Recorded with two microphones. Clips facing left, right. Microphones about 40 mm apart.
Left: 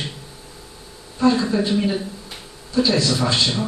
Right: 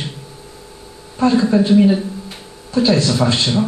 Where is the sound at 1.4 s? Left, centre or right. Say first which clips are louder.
Right 6 dB; centre.